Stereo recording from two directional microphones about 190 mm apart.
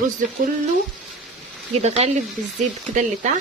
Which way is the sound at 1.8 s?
35° right (ahead or behind).